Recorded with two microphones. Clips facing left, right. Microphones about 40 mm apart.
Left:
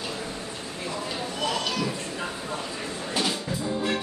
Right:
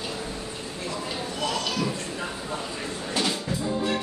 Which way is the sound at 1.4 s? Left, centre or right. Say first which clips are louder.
Even; centre.